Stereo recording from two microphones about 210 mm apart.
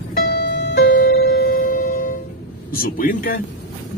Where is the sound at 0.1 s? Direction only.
55° left (ahead or behind).